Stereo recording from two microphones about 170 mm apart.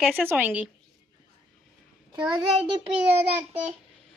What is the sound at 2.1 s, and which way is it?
Speech, 25° right (ahead or behind).